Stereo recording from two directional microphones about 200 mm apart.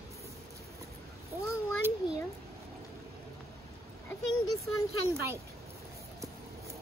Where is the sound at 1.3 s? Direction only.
10° right (ahead or behind).